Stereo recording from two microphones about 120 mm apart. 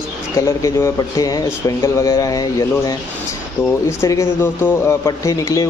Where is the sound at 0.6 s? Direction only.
30° left (ahead or behind).